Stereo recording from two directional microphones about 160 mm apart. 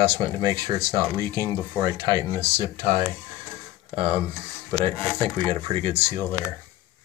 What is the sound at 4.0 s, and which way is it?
Speech, 30° right (ahead or behind).